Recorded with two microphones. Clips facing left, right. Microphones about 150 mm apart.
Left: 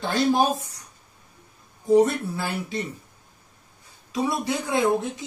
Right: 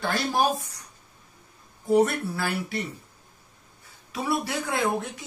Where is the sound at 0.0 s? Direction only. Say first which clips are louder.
Left 4 dB; 20° left (ahead or behind).